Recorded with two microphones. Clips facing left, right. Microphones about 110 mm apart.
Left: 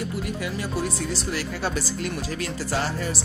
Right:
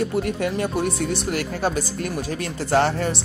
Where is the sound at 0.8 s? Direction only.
60° right (ahead or behind).